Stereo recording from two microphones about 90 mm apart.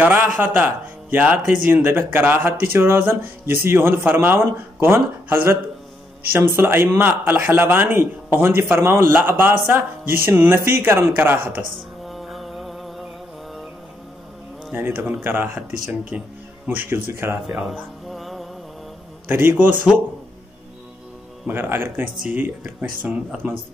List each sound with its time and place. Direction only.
0.0 s a man's voice: 20° right (ahead or behind)
12.1 s music: centre (ahead or behind)
14.7 s a man's voice: 20° right (ahead or behind)
17.5 s music: 5° right (ahead or behind)
19.2 s a man's voice: 25° right (ahead or behind)
21.5 s a man's voice: 25° right (ahead or behind)